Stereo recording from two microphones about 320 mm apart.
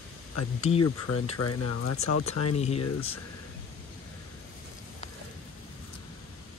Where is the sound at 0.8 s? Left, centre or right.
Left.